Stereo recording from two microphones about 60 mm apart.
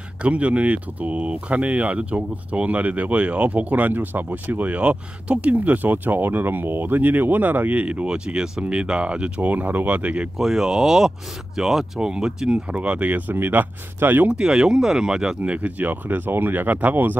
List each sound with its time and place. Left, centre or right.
0.2 s speech: right
10.3 s speech: centre; by 13.2 s right
13.3 s speech: right
14.3 s speech: centre; by 17.2 s right